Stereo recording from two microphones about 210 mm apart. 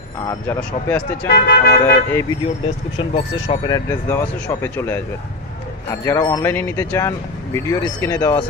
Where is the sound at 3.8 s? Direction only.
10° left (ahead or behind).